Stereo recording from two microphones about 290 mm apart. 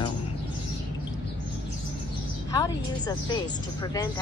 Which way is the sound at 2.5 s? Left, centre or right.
Centre.